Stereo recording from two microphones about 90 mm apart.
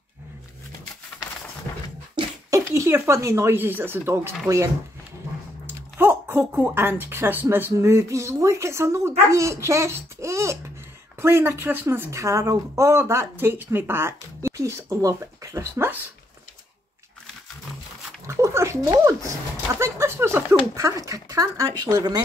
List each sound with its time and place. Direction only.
2.7 s a woman's voice: 30° right (ahead or behind)
5.9 s a woman's voice: 25° right (ahead or behind)
18.2 s speech: 35° right (ahead or behind)
20.7 s speech: 35° right (ahead or behind)